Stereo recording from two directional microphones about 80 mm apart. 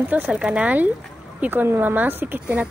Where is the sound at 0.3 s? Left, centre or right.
Centre.